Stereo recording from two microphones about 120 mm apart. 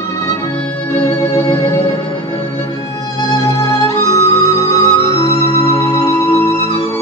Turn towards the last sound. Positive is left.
turn(degrees=20)  # may be behind; listen again after turning